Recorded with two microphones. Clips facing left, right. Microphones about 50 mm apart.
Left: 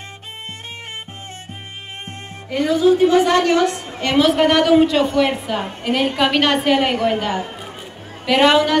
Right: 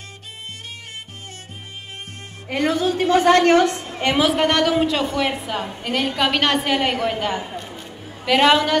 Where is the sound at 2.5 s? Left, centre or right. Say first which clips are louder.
Left 5 dB; right.